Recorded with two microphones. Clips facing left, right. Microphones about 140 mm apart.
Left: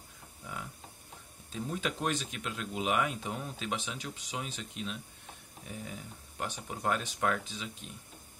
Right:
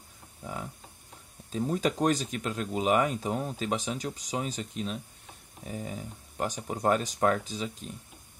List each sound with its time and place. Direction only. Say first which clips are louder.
1.5 s speech: right 7 dB; 40° right (ahead or behind)